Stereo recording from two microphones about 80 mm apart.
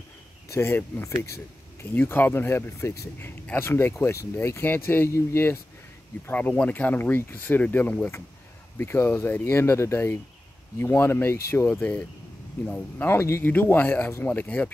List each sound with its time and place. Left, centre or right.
0.5 s speech: left
2.0 s speech: left